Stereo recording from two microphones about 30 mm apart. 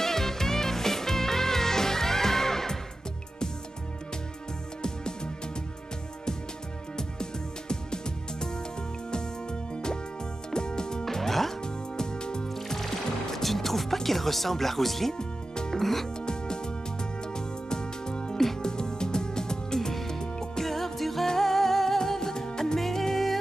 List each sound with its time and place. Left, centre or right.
0.0 s music: centre
4.8 s music: left
7.0 s music: left
11.1 s music: centre
11.6 s music: left
12.5 s music: centre
15.1 s music: left
15.8 s music: centre
16.2 s music: left
20.6 s music: centre
22.8 s music: centre